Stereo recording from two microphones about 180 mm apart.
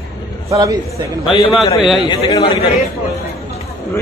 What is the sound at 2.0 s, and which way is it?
Speech, 25° left (ahead or behind).